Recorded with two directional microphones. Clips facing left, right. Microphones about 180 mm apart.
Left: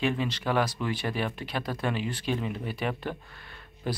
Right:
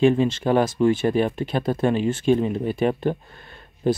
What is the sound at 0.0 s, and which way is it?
Speech, 30° right (ahead or behind).